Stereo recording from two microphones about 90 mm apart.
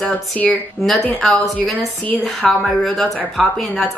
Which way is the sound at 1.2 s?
5° left (ahead or behind).